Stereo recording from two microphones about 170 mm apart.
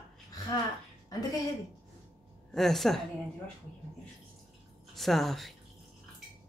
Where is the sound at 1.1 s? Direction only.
20° left (ahead or behind).